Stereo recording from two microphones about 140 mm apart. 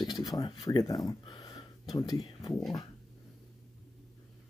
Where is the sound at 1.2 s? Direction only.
25° left (ahead or behind).